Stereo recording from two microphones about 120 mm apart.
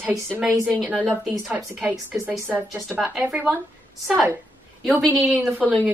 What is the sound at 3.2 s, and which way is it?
Speech, 15° right (ahead or behind).